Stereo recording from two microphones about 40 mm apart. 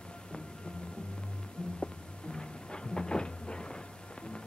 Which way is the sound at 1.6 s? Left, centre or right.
Left.